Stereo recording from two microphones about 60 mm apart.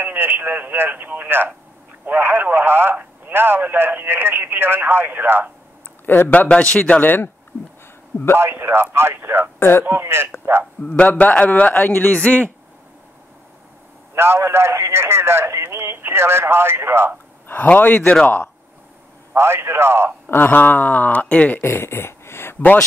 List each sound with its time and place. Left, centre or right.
0.0 s speech: right
6.0 s a man's voice: left
6.3 s a man's voice: left
7.0 s speech: left
8.4 s a man's voice: right
9.6 s speech: left
9.8 s speech: right
10.9 s a man's voice: left
14.1 s a man's voice: right
17.5 s a man's voice: left
19.3 s a man's voice: right
20.2 s a man's voice: left
21.5 s speech: left